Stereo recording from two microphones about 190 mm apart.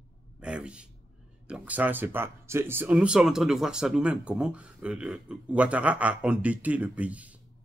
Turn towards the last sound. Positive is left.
turn(degrees=-5)  # may be behind; listen again after turning